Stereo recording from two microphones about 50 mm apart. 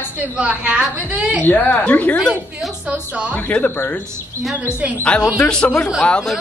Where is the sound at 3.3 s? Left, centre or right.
Left.